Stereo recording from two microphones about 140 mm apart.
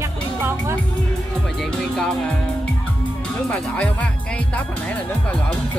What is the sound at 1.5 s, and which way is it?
Music, centre (ahead or behind).